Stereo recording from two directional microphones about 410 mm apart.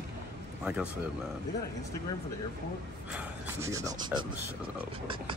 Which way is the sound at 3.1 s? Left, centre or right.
Centre.